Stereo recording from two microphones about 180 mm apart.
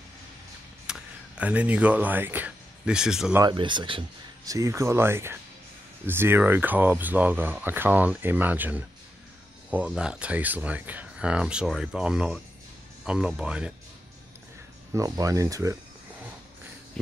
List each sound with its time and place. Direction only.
0.8 s speech: 5° right (ahead or behind)
3.3 s speech: 25° right (ahead or behind); by 13.7 s 5° right (ahead or behind)
15.0 s speech: 20° right (ahead or behind)